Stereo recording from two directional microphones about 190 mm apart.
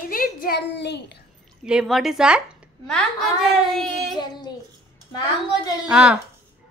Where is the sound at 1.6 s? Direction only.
Centre (ahead or behind).